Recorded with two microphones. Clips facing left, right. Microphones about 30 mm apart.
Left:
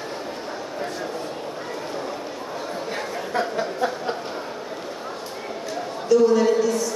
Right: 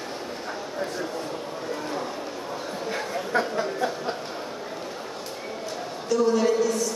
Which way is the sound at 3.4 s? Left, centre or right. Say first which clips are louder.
Left 2 dB; centre.